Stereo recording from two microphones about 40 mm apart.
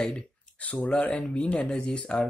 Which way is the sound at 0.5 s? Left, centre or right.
Left.